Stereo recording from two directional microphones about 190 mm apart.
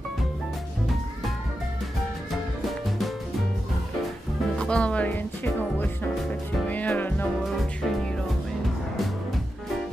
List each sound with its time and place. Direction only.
4.6 s music: 5° left (ahead or behind)